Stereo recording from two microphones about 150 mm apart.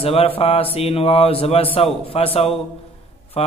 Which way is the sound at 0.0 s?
40° left (ahead or behind).